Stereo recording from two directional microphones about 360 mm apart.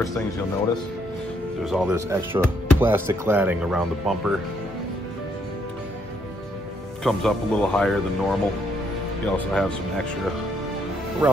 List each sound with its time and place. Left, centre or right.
1.6 s speech: centre
7.0 s speech: centre
9.5 s speech: centre
11.2 s speech: centre